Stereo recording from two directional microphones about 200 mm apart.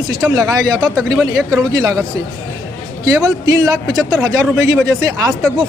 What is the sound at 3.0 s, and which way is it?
A man's voice, 20° right (ahead or behind).